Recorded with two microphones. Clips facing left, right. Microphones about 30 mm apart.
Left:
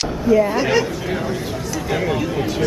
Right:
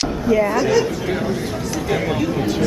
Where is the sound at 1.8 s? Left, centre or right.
Centre.